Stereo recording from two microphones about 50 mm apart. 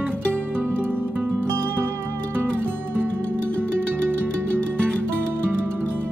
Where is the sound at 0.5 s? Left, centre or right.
Right.